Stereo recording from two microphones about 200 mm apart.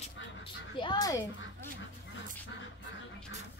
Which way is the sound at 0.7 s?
20° left (ahead or behind).